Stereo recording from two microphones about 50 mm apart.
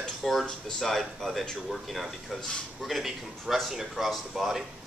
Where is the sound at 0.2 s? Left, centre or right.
Centre.